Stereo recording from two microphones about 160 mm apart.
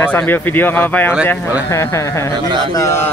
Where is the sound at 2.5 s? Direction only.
30° right (ahead or behind).